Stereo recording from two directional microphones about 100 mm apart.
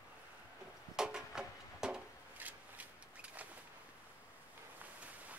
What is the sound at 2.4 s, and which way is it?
Shuffling cards, 15° right (ahead or behind).